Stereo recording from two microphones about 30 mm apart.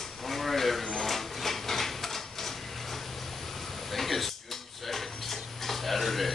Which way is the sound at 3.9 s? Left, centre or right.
Centre.